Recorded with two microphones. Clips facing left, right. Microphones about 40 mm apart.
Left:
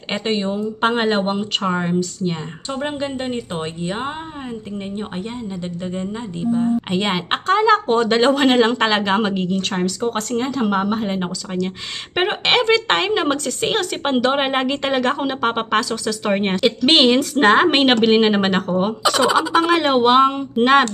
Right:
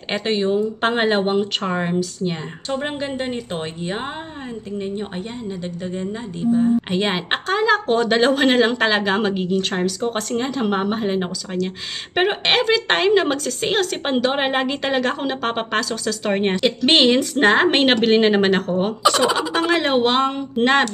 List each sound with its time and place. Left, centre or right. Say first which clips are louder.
0.1 s a woman's voice: right 2 dB; centre
6.6 s a woman's voice: right 1 dB; centre
14.1 s speech: left 2 dB; centre
14.8 s speech: left 2 dB; centre